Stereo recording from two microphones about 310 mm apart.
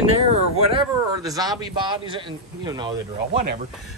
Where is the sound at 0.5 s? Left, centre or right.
Centre.